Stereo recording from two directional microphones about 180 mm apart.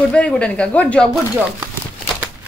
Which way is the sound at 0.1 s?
5° left (ahead or behind).